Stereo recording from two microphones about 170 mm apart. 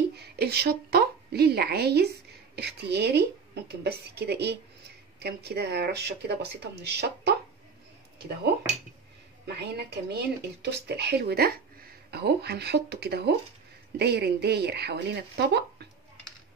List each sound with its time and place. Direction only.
0.1 s a woman's voice: 70° right (ahead or behind)
9.5 s speech: 75° right (ahead or behind)